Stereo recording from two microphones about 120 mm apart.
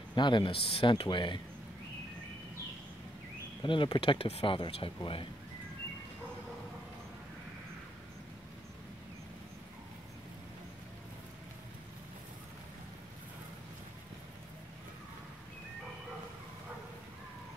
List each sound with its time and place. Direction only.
0.1 s speech: 40° left (ahead or behind)
3.6 s speech: 45° left (ahead or behind)